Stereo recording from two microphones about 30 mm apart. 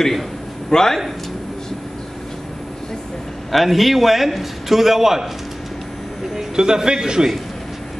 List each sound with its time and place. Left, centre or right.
0.7 s a man's voice: centre
3.5 s a man's voice: centre
6.3 s a man's voice: right